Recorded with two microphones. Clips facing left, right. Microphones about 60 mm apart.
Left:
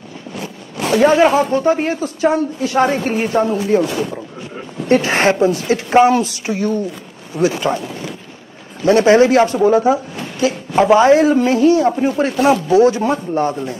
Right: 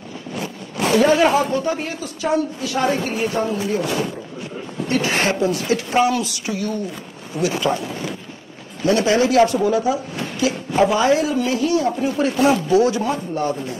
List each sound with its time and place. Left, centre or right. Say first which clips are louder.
0.9 s a woman's voice: left 4 dB; left
4.8 s a woman's voice: left 6 dB; left
8.8 s a woman's voice: left 6 dB; left